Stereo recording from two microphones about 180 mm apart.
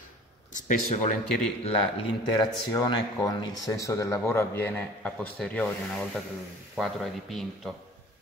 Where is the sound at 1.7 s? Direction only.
30° left (ahead or behind).